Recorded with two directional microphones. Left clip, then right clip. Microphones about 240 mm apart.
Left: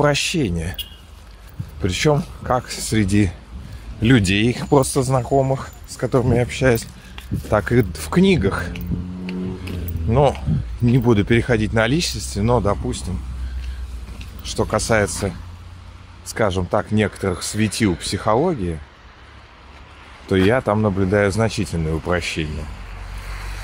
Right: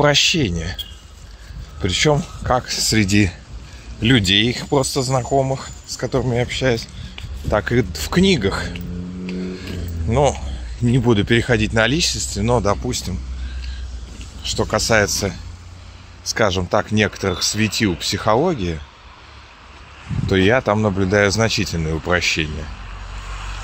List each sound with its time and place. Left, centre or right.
0.0 s speech: centre
1.8 s speech: centre
10.0 s speech: centre
14.4 s speech: centre
16.3 s speech: centre
20.2 s speech: centre
23.1 s vehicle: left